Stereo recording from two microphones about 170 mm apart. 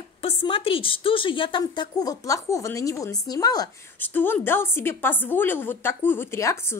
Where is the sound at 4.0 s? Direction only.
10° left (ahead or behind).